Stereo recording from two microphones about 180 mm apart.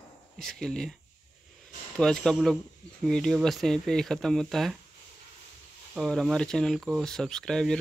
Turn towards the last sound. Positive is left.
turn(degrees=5)  # may be behind; listen again after turning